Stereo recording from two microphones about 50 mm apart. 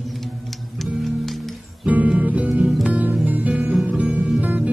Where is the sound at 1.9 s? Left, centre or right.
Right.